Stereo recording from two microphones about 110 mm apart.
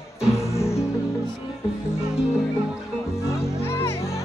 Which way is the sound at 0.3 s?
25° left (ahead or behind).